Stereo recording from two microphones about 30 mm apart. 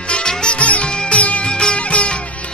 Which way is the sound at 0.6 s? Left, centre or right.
Left.